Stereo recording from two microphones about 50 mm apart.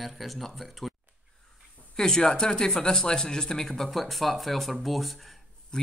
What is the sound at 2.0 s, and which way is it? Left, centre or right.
A man's voice, centre.